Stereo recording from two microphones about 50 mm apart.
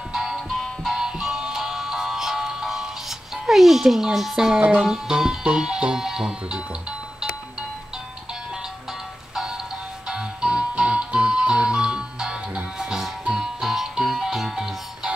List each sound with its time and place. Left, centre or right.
0.1 s music: centre
0.5 s music: centre
0.9 s music: centre
3.4 s a child's voice: centre
4.6 s music: right
4.8 s speech: centre
10.0 s music: centre